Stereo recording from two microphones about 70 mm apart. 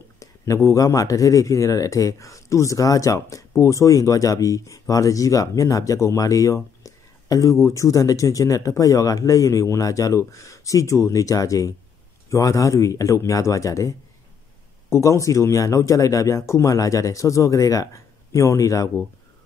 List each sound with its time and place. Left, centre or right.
0.2 s speech: left